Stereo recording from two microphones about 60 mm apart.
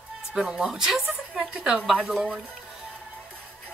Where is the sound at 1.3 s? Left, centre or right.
Centre.